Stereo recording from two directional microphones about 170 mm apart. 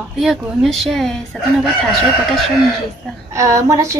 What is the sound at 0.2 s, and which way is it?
Speech, centre (ahead or behind).